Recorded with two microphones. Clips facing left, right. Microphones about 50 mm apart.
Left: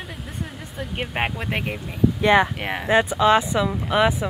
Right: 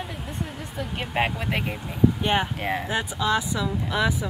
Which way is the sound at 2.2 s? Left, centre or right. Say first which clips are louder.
Left 7 dB; left.